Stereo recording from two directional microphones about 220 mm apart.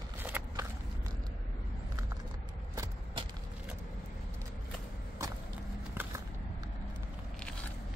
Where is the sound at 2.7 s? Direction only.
20° right (ahead or behind).